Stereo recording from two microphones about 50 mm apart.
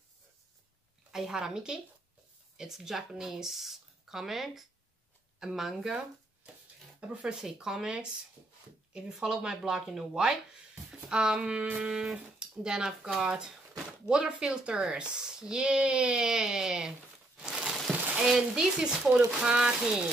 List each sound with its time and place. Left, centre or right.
1.1 s speech: centre
7.0 s speech: right
7.3 s speech: centre
17.9 s a sound: centre
18.2 s speech: centre